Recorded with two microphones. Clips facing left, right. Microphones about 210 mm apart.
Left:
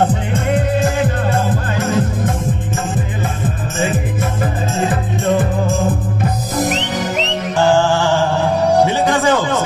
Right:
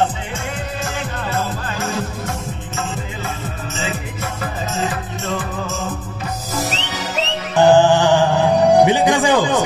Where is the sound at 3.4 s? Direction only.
50° left (ahead or behind).